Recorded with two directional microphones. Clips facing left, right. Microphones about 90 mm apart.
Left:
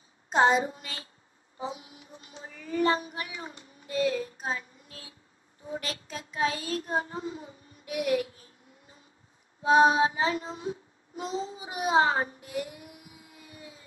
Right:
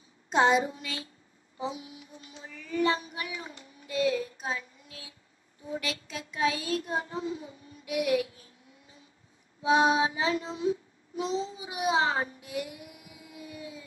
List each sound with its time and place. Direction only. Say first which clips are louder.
0.3 s a child's voice: left 1 dB; 40° left (ahead or behind)
7.8 s music: right 1 dB; 40° left (ahead or behind)
9.6 s child singing: left 3 dB; 40° left (ahead or behind)